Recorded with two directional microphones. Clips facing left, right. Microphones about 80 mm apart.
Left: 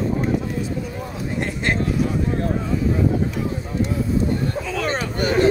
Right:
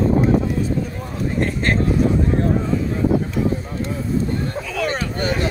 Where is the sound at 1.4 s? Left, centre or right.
Right.